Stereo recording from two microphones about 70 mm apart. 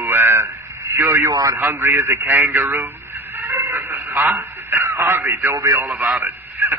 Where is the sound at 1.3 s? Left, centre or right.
Right.